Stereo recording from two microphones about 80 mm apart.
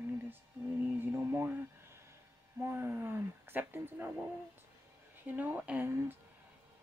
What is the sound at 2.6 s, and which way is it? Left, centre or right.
A woman's voice, right.